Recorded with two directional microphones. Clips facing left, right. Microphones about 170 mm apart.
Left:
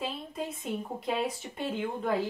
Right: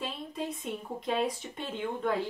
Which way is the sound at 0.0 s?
Centre (ahead or behind).